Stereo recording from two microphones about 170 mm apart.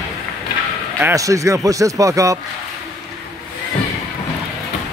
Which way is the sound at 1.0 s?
20° right (ahead or behind).